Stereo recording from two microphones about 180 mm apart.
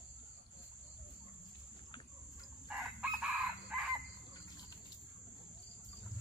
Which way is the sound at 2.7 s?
5° right (ahead or behind).